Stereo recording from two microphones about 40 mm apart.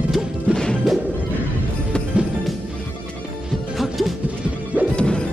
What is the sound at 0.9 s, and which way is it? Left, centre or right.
Smash, centre.